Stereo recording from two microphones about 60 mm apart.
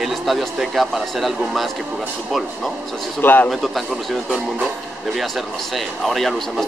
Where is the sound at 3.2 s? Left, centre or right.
Left.